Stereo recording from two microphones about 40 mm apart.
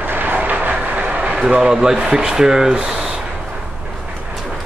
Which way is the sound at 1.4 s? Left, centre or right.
Right.